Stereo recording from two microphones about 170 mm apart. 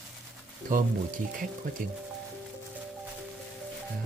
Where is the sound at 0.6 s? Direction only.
55° right (ahead or behind).